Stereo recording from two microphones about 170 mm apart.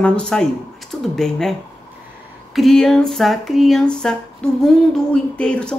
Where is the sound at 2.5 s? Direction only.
Centre (ahead or behind).